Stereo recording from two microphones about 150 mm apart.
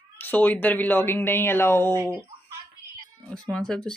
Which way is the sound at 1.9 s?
20° right (ahead or behind).